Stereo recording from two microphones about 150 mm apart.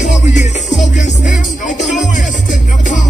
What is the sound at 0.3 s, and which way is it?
Music, 50° left (ahead or behind).